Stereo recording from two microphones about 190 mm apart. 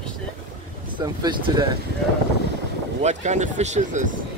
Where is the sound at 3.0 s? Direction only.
40° right (ahead or behind).